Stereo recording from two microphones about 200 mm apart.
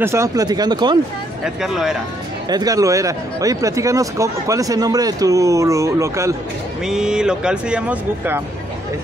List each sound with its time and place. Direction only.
0.0 s speech: 15° right (ahead or behind)
1.4 s speech: centre (ahead or behind)
2.5 s speech: 20° right (ahead or behind)
6.8 s speech: 5° right (ahead or behind)